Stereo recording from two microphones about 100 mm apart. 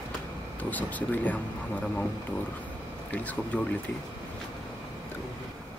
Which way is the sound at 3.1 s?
15° left (ahead or behind).